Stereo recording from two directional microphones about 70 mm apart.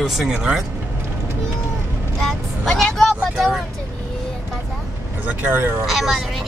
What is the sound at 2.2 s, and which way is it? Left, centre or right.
Vehicle, centre.